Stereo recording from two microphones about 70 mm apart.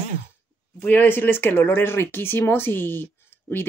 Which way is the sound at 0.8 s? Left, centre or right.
Left.